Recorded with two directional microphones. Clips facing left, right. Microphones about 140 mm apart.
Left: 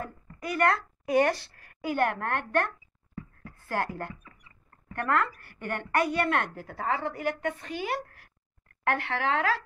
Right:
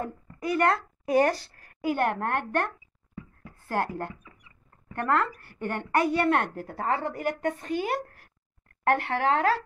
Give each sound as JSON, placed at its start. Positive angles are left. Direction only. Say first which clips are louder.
{"t": 0.5, "sound": "a woman's voice", "louder": "right 2 dB", "side_deg": -25}
{"t": 1.0, "sound": "speech", "louder": "right 1 dB", "side_deg": -40}
{"t": 1.9, "sound": "a woman's voice", "louder": "right 1 dB", "side_deg": -30}
{"t": 6.6, "sound": "a woman's voice", "louder": "right 2 dB", "side_deg": -45}